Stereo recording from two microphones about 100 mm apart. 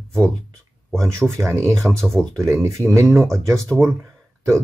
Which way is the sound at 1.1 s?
30° right (ahead or behind).